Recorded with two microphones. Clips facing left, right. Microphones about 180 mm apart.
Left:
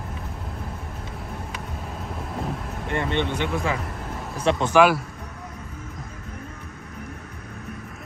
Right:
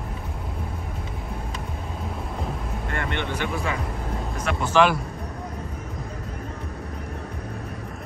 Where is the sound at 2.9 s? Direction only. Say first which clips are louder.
Left 5 dB; 20° left (ahead or behind).